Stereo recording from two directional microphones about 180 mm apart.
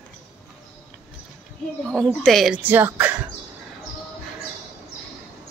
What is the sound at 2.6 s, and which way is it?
Speech, 10° right (ahead or behind).